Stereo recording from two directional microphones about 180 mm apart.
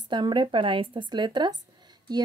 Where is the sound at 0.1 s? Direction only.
25° right (ahead or behind).